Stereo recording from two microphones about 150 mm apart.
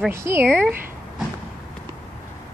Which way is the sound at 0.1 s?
15° right (ahead or behind).